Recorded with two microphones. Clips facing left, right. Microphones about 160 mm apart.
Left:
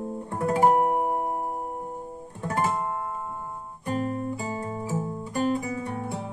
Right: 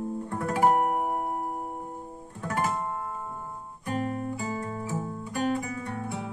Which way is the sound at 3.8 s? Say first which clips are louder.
Left 2 dB; 40° left (ahead or behind).